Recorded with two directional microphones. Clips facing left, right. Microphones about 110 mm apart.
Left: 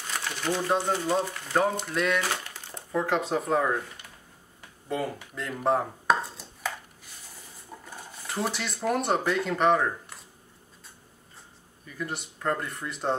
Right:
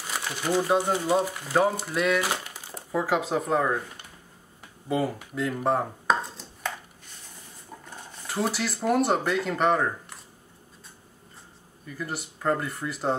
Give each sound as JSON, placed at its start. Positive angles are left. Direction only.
{"t": 0.0, "sound": "speech", "side_deg": -5}
{"t": 4.8, "sound": "chopping", "side_deg": -5}
{"t": 7.8, "sound": "speech", "side_deg": 5}
{"t": 11.8, "sound": "speech", "side_deg": 0}